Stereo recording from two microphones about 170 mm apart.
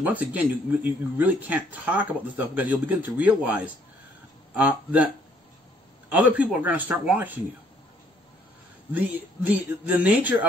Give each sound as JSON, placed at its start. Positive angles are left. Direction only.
{"t": 0.0, "sound": "speech", "side_deg": -10}
{"t": 9.5, "sound": "speech", "side_deg": -10}